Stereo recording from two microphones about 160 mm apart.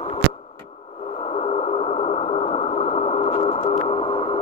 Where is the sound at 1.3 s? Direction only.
40° left (ahead or behind).